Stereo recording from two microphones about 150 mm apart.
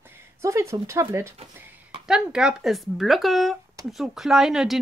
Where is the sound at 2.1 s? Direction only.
5° right (ahead or behind).